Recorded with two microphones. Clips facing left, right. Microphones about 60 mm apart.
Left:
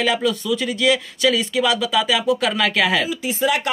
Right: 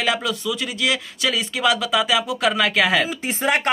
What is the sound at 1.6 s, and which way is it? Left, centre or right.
Speech, centre.